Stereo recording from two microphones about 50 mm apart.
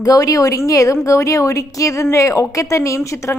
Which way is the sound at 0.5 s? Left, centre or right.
Left.